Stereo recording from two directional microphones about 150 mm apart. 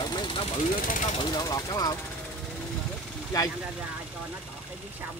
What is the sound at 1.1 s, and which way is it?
Speech, 30° left (ahead or behind).